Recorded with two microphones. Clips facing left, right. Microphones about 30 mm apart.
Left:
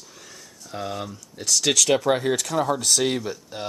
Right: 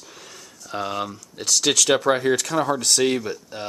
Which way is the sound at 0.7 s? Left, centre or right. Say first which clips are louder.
Right 4 dB; right.